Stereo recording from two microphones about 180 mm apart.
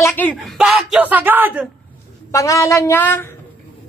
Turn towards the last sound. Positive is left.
turn(degrees=10)  # may be behind; listen again after turning